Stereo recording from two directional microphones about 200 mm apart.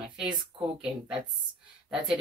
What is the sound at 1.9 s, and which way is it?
Speech, centre (ahead or behind).